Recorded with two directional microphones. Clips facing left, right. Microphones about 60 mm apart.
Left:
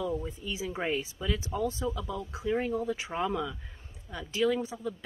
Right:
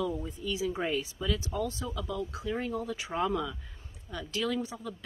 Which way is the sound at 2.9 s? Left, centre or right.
Left.